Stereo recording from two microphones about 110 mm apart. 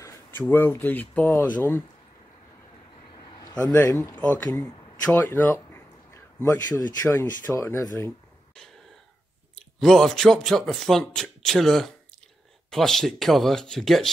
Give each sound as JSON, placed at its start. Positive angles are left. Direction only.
{"t": 0.3, "sound": "speech", "side_deg": 20}
{"t": 3.6, "sound": "speech", "side_deg": 15}
{"t": 5.0, "sound": "a man's voice", "side_deg": 20}
{"t": 9.8, "sound": "speech", "side_deg": 0}